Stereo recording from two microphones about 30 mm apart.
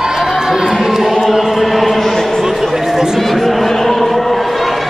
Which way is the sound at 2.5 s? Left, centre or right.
Centre.